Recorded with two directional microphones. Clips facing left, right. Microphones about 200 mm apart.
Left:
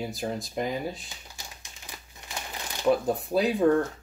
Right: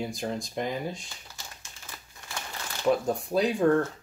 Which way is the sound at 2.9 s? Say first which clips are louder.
Left 1 dB; centre (ahead or behind).